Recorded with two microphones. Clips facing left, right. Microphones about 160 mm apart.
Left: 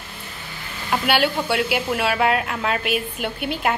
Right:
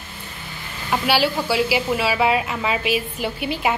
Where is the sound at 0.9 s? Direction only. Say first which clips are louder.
Even; centre (ahead or behind).